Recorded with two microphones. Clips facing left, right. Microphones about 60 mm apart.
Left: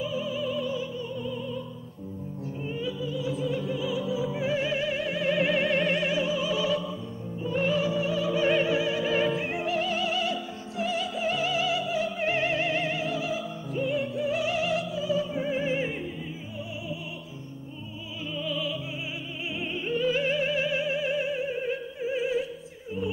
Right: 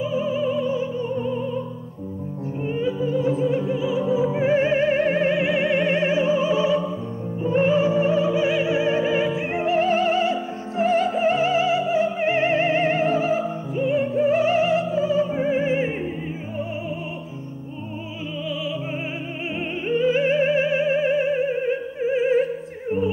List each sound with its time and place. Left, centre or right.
0.0 s music: right
2.6 s opera: right
5.3 s opera: centre
7.4 s music: right
8.6 s opera: right
9.1 s music: centre
9.5 s music: right
13.7 s music: right
18.5 s music: centre
19.9 s music: right